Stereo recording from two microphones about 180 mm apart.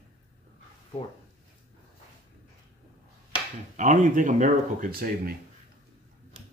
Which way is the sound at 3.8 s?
45° right (ahead or behind).